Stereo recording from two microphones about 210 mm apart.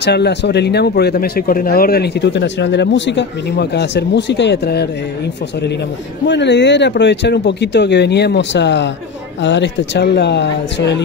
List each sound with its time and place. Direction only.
0.0 s speech: 55° left (ahead or behind)
6.2 s speech: 55° left (ahead or behind)